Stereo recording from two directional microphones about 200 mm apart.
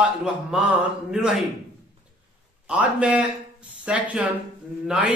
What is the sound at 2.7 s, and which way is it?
Speech, 5° right (ahead or behind).